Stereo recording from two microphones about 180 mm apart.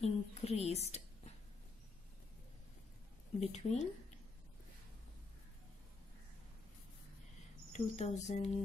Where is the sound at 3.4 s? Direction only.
40° left (ahead or behind).